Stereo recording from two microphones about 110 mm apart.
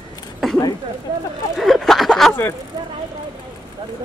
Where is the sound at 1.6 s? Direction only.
Centre (ahead or behind).